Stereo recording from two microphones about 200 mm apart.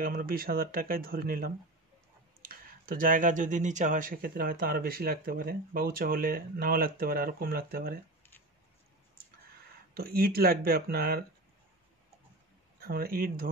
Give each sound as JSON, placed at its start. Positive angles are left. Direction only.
{"t": 0.0, "sound": "speech", "side_deg": -45}
{"t": 9.9, "sound": "speech", "side_deg": -50}
{"t": 12.8, "sound": "speech", "side_deg": -50}